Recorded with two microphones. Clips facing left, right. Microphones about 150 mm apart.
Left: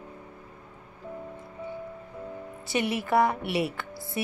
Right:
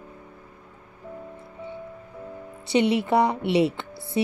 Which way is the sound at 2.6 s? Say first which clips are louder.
Right 7 dB; 20° right (ahead or behind).